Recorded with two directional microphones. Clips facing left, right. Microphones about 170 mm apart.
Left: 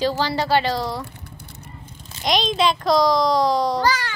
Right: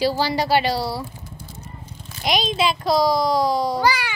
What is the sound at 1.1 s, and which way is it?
Vehicle, 65° left (ahead or behind).